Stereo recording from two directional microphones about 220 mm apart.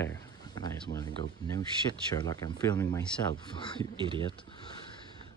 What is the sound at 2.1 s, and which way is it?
Speech, 15° left (ahead or behind).